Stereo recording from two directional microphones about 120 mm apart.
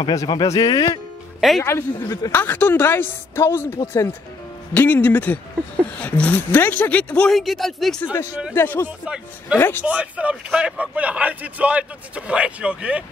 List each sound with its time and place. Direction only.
0.0 s speech: 35° left (ahead or behind)
1.6 s a man's voice: 20° left (ahead or behind)
2.3 s speech: 15° left (ahead or behind); by 8.0 s centre (ahead or behind)
8.5 s a man's voice: 20° left (ahead or behind)
8.8 s speech: 10° right (ahead or behind)
9.6 s a man's voice: 20° left (ahead or behind)
9.8 s speech: 10° right (ahead or behind)